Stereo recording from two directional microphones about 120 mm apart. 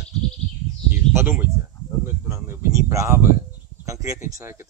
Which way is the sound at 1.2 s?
15° right (ahead or behind).